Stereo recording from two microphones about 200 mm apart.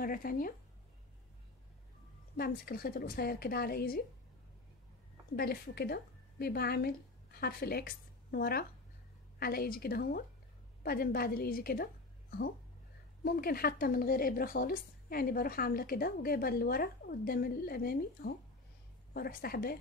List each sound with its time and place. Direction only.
0.0 s speech: 45° left (ahead or behind)
2.3 s speech: 50° left (ahead or behind)
5.3 s a woman's voice: 50° left (ahead or behind)